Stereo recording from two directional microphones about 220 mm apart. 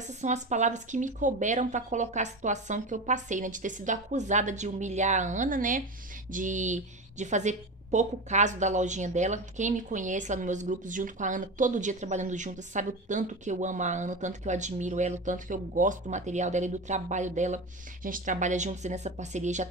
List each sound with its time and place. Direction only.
0.2 s a woman's voice: 35° right (ahead or behind)